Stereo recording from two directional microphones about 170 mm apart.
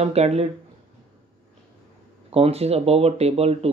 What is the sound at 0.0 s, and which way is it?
Speech, 40° right (ahead or behind).